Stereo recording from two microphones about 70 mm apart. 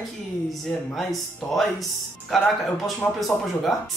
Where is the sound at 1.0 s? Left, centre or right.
Centre.